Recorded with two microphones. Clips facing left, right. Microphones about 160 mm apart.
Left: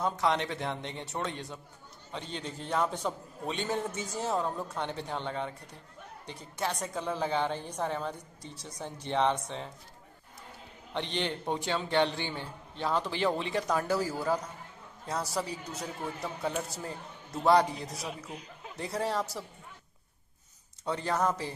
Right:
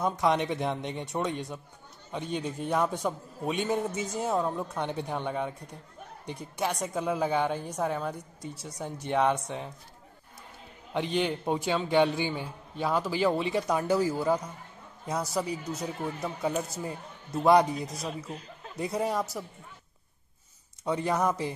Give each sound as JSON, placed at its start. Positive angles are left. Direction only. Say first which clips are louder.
{"t": 0.0, "sound": "a man's voice", "louder": "right 3 dB", "side_deg": -15}
{"t": 10.9, "sound": "a man's voice", "louder": "right 5 dB", "side_deg": -5}
{"t": 18.0, "sound": "speech", "louder": "right 4 dB", "side_deg": 10}
{"t": 18.8, "sound": "a man's voice", "louder": "right 3 dB", "side_deg": -10}
{"t": 20.8, "sound": "a man's voice", "louder": "right 3 dB", "side_deg": -15}